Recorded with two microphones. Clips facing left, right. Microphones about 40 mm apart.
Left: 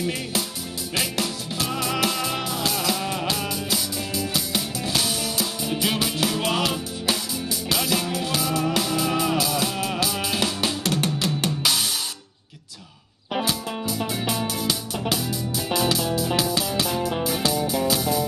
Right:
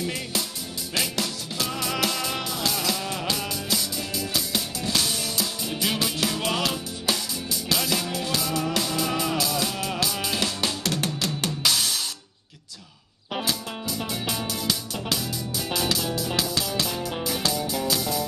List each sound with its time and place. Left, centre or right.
1.2 s music: centre
13.5 s music: centre